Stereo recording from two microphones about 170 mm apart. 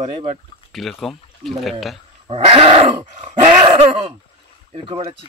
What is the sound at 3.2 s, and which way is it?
Dog, 40° right (ahead or behind).